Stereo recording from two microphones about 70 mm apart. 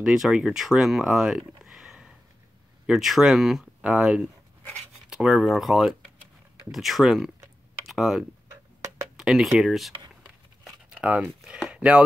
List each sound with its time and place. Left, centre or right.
0.0 s speech: centre
3.8 s speech: centre
10.9 s speech: centre